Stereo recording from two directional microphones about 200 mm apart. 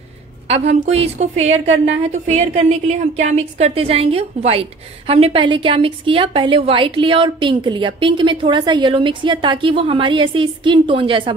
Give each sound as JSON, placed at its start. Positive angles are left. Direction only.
{"t": 0.5, "sound": "a woman's voice", "side_deg": -30}